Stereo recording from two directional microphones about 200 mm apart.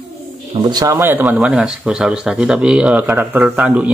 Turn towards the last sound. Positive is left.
turn(degrees=-5)  # may be behind; listen again after turning